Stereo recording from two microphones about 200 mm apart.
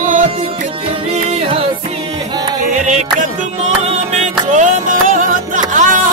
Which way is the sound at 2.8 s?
35° right (ahead or behind).